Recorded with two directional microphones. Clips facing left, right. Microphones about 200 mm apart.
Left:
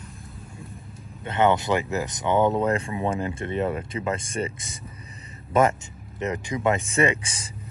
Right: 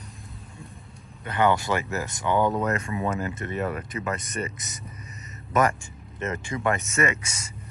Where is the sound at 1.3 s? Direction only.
20° left (ahead or behind).